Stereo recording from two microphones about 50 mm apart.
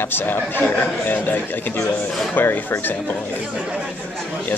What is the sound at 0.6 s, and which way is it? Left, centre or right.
Speech, left.